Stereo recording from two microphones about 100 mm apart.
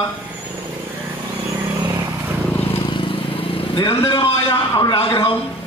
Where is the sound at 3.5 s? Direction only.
65° left (ahead or behind).